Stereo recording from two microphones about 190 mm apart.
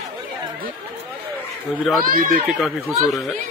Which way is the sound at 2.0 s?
45° right (ahead or behind).